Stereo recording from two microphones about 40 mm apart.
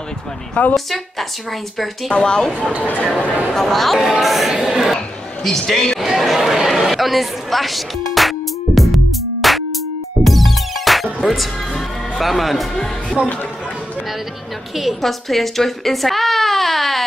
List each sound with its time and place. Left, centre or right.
0.7 s speech: centre
2.1 s a woman's voice: left
3.5 s speech: centre
4.0 s speech: centre
5.4 s a man's voice: centre
6.0 s chatter: centre
10.2 s music: centre
13.2 s speech: right
14.8 s speech: centre